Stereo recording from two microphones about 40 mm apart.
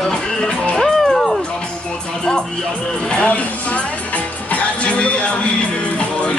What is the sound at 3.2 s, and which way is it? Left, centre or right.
Speech, left.